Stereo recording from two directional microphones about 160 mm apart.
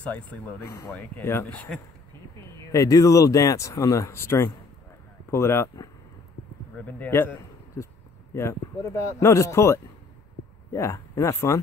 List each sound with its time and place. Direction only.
0.0 s speech: 10° left (ahead or behind)
6.9 s a man's voice: 10° left (ahead or behind)